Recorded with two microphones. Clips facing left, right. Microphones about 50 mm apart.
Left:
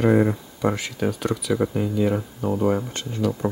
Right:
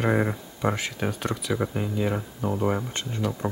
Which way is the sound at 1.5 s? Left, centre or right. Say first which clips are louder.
Left 5 dB; centre.